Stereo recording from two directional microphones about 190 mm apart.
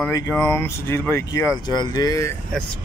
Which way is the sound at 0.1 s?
15° left (ahead or behind).